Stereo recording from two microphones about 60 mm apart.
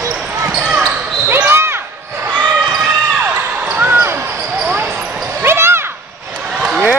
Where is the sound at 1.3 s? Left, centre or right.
Right.